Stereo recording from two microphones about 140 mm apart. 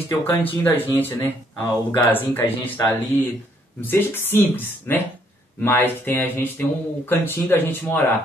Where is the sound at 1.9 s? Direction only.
15° left (ahead or behind).